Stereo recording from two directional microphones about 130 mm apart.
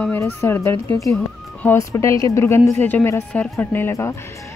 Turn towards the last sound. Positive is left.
turn(degrees=20)  # may be behind; listen again after turning